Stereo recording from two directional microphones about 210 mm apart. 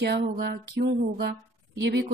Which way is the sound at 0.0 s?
55° right (ahead or behind).